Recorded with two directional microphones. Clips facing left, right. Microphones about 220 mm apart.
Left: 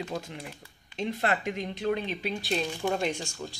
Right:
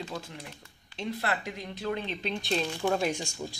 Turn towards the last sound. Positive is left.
turn(degrees=-10)  # may be behind; listen again after turning